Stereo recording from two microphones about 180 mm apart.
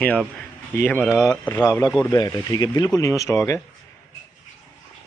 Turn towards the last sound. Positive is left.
turn(degrees=15)  # may be behind; listen again after turning